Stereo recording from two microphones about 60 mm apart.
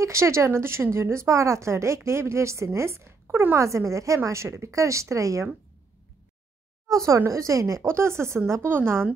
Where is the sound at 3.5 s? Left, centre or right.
Right.